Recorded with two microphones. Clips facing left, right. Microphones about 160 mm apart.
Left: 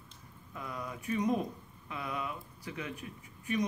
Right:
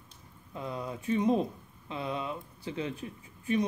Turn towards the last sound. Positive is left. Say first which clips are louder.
# right 4 dB
turn(degrees=-30)  # may be behind; listen again after turning